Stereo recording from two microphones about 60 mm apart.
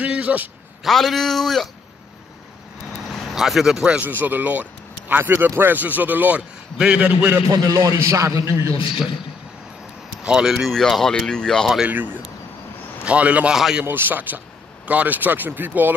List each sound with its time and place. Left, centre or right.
0.0 s a sound: right
0.8 s speech: centre
3.3 s speech: centre
4.0 s a man's voice: right
7.4 s speech: right
10.4 s speech: centre
10.7 s speech: centre
11.8 s a man's voice: right
13.5 s speech: centre
13.8 s speech: right